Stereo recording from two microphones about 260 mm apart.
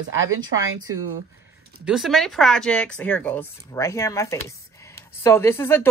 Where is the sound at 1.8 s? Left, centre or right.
Centre.